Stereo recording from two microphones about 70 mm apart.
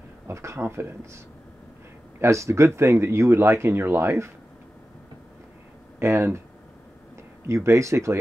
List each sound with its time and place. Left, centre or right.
0.3 s speech: right
5.9 s speech: right
7.4 s speech: right